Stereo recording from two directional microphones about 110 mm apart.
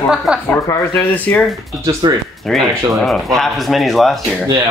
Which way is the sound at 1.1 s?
10° left (ahead or behind).